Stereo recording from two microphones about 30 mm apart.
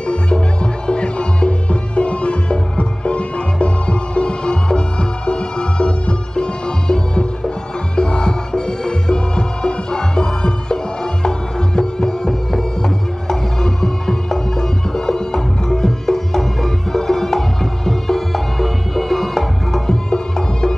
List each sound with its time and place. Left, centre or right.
0.0 s music: left; by 19.8 s centre
19.9 s music: left